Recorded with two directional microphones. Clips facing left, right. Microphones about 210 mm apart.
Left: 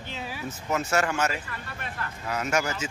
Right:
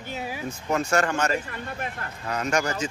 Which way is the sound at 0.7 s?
5° left (ahead or behind).